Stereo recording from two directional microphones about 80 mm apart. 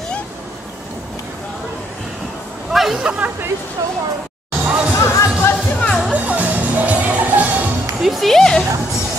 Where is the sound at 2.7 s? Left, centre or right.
Centre.